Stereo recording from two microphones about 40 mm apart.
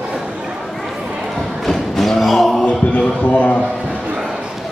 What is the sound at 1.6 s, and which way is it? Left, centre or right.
Music, centre.